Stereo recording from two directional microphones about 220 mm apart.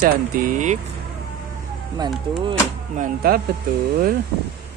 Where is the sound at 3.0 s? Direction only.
40° right (ahead or behind).